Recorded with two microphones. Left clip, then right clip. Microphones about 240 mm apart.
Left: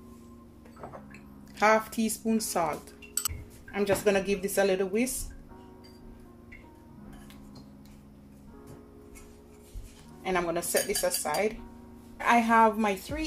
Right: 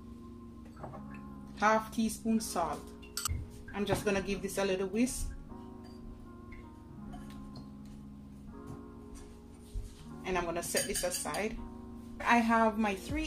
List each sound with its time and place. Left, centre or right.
1.6 s a woman's voice: left
3.7 s a woman's voice: left
10.2 s a woman's voice: left